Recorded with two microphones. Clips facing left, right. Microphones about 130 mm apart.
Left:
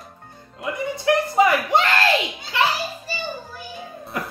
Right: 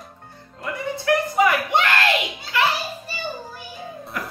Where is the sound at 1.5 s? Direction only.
35° left (ahead or behind).